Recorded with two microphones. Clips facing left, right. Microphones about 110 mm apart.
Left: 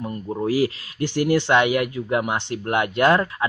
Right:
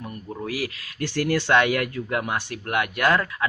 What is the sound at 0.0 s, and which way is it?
Speech, 25° left (ahead or behind).